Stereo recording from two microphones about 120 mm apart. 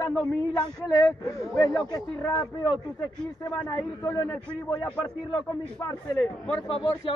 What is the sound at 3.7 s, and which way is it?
Speech, 25° left (ahead or behind).